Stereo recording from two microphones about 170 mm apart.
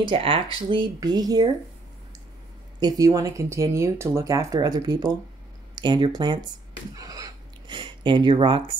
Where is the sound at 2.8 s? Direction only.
20° right (ahead or behind).